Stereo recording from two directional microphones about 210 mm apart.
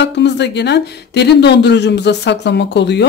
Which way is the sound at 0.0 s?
55° left (ahead or behind).